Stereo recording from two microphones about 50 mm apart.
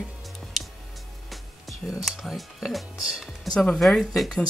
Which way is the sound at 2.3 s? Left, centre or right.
Centre.